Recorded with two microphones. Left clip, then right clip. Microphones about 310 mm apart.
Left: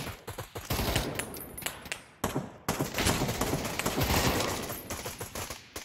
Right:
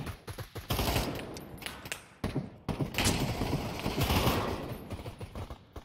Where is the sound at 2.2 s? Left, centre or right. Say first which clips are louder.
Left 7 dB; left.